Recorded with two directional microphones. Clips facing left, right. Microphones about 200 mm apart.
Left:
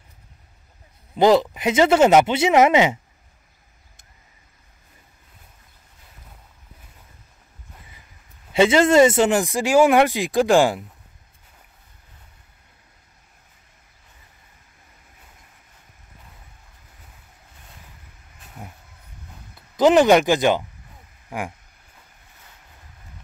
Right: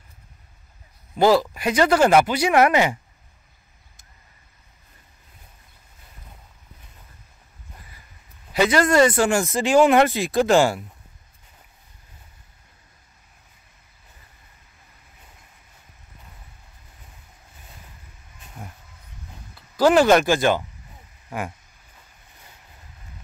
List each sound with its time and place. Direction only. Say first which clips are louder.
1.1 s speech: left 2 dB; 20° left (ahead or behind)
8.5 s speech: left 3 dB; 25° left (ahead or behind)
19.8 s speech: left 1 dB; 20° left (ahead or behind)